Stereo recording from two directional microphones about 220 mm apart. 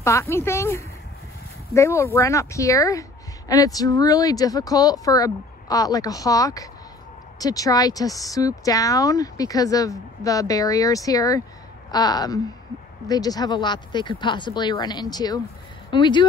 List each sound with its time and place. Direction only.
0.0 s speech: 10° left (ahead or behind)